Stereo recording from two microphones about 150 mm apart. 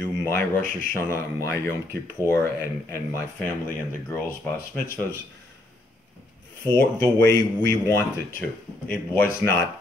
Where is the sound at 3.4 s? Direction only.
15° left (ahead or behind).